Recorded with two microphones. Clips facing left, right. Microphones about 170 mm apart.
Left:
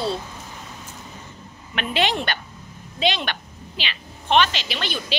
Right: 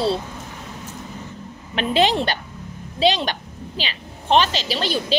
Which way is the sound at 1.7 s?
35° right (ahead or behind).